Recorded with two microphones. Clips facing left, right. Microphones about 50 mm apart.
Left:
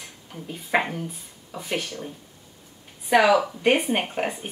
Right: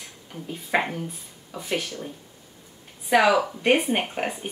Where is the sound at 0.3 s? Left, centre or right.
Centre.